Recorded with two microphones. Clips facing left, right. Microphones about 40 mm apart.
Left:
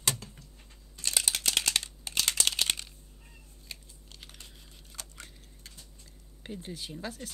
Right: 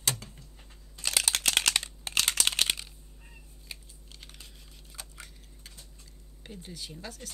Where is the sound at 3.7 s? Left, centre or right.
Centre.